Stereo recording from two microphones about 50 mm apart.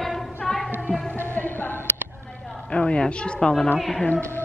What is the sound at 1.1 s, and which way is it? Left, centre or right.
Music, left.